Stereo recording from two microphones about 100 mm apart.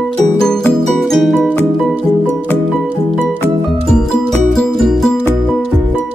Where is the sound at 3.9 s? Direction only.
5° left (ahead or behind).